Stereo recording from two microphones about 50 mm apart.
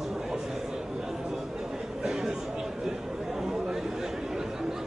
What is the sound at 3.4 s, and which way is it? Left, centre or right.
Chatter, centre.